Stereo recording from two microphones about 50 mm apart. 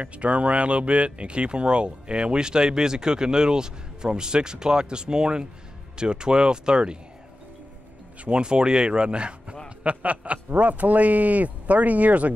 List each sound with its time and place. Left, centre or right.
0.0 s speech: right
8.2 s speech: right